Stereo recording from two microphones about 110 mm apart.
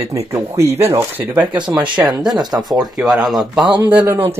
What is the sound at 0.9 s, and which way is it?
Speech, 15° right (ahead or behind).